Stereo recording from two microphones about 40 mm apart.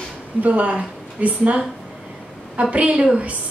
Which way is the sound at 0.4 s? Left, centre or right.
Right.